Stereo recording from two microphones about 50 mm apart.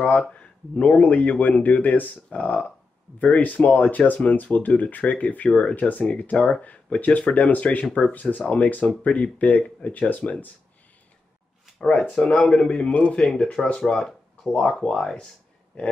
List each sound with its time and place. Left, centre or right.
0.3 s speech: left
8.1 s speech: left
11.8 s speech: left
13.2 s speech: centre
15.7 s speech: left